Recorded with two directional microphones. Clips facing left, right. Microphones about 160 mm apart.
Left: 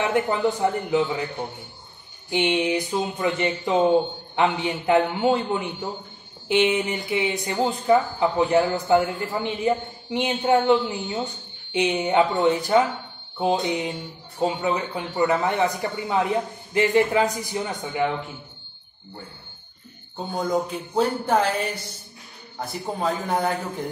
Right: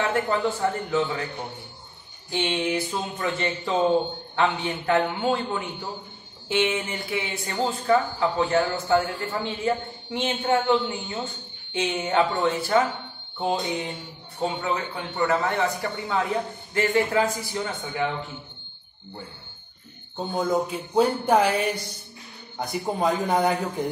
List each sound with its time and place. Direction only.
0.0 s a man's voice: 15° left (ahead or behind)
2.3 s a man's voice: 15° left (ahead or behind)
20.3 s speech: 5° right (ahead or behind)